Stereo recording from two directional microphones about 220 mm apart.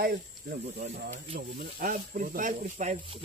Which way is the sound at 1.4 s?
40° right (ahead or behind).